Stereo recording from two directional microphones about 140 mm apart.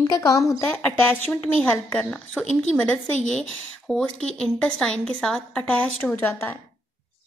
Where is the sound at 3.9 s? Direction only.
5° left (ahead or behind).